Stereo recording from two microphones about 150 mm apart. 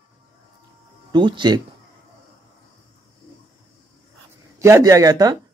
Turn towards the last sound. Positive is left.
turn(degrees=-25)  # may be behind; listen again after turning